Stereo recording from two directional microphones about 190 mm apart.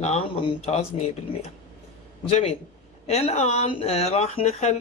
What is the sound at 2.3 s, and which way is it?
Speech, 35° left (ahead or behind).